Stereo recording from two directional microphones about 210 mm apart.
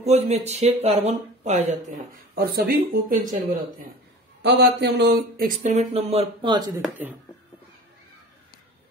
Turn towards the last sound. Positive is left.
turn(degrees=-5)  # may be behind; listen again after turning